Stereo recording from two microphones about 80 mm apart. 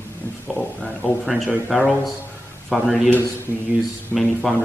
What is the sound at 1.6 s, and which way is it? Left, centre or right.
Speech, centre.